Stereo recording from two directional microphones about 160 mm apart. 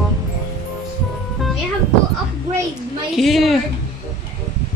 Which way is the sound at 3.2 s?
Centre (ahead or behind).